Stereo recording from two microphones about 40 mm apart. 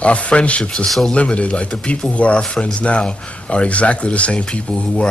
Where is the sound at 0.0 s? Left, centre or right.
Left.